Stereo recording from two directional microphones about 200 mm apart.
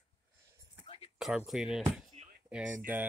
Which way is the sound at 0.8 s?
25° left (ahead or behind).